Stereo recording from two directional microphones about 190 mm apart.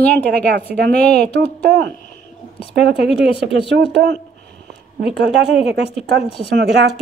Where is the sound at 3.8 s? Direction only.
60° right (ahead or behind).